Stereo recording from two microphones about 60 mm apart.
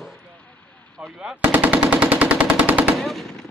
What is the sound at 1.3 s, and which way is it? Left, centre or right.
Machine gun, right.